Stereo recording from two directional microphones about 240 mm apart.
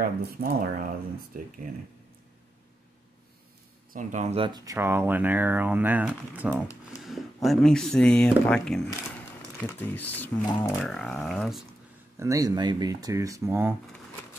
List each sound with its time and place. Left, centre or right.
0.0 s speech: right
3.9 s speech: right; by 10.7 s centre
10.8 s speech: centre
12.2 s speech: centre